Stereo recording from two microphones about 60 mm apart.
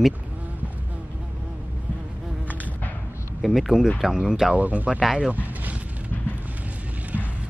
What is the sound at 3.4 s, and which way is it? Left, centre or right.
Speech, centre.